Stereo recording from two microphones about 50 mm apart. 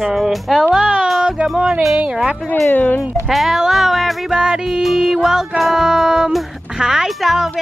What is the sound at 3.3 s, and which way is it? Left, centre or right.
Speech, centre.